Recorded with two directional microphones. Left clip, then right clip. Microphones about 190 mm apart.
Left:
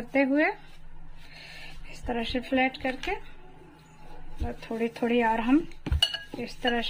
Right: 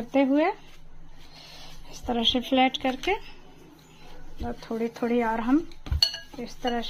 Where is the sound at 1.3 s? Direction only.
15° right (ahead or behind).